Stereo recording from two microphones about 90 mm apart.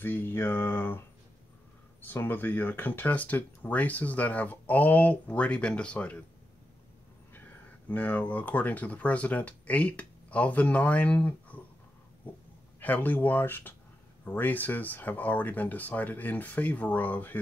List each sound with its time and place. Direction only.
0.0 s mantra: 25° left (ahead or behind)
2.0 s speech: 20° left (ahead or behind)
7.9 s speech: 20° left (ahead or behind)
12.8 s speech: 20° left (ahead or behind)